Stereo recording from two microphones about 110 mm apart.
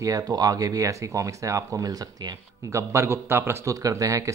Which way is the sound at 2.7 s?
25° right (ahead or behind).